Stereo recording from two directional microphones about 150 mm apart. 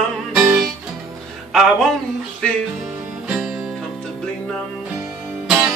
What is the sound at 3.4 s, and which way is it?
Music, 5° right (ahead or behind).